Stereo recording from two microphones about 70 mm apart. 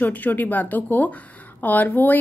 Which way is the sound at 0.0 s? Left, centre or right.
Left.